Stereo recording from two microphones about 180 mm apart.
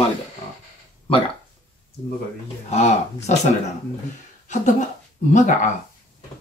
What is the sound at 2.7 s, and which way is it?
Speech, 35° left (ahead or behind).